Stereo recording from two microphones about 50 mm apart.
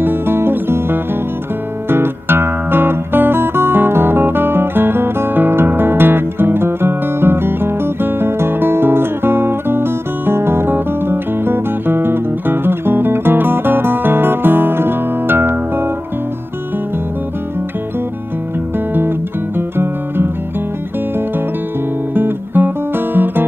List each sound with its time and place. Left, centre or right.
0.0 s music: right
1.9 s guitar: right
18.9 s music: right
22.1 s music: right